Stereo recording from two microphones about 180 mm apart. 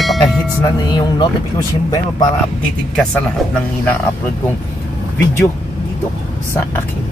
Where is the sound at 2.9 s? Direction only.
5° left (ahead or behind).